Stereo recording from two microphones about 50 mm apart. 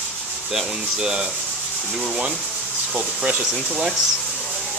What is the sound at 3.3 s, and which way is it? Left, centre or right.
Speech, right.